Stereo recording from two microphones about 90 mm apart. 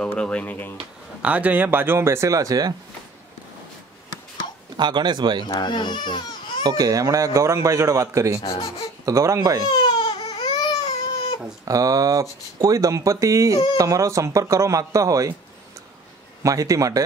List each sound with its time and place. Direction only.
0.0 s speech: 10° left (ahead or behind)
1.2 s speech: 15° right (ahead or behind); by 2.7 s 40° right (ahead or behind)
4.7 s speech: 55° right (ahead or behind)
5.6 s speech: 60° left (ahead or behind)
6.6 s speech: 45° right (ahead or behind)
8.4 s speech: 90° left
9.0 s speech: 35° right (ahead or behind)
9.7 s baby cry: 60° left (ahead or behind)
11.6 s speech: 40° right (ahead or behind)
16.4 s speech: 40° right (ahead or behind)